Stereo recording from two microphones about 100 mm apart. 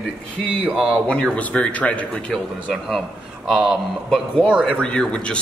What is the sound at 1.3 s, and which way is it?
A man's voice, 10° left (ahead or behind).